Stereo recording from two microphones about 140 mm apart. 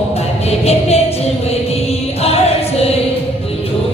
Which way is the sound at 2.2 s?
45° left (ahead or behind).